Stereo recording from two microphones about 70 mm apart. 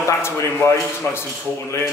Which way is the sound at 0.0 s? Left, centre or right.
Left.